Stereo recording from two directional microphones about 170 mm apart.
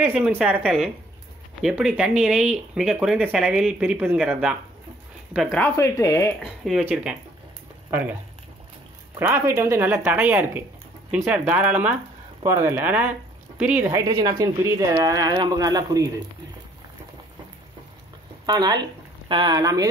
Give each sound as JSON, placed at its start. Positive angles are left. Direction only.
{"t": 0.0, "sound": "speech", "side_deg": -10}
{"t": 5.6, "sound": "speech", "side_deg": 15}
{"t": 6.4, "sound": "speech", "side_deg": 0}
{"t": 9.2, "sound": "speech", "side_deg": -15}
{"t": 18.4, "sound": "speech", "side_deg": -25}